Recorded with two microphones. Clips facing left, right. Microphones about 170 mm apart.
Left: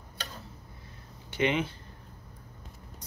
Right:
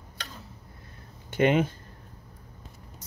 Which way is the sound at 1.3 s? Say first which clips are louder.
Right 5 dB; 50° right (ahead or behind).